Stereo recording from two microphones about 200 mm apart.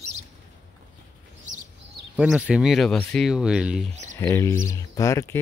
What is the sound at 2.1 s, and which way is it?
Speech, 5° right (ahead or behind).